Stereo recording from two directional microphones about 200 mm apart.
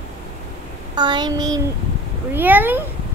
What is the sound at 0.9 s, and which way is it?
Child singing, 20° right (ahead or behind).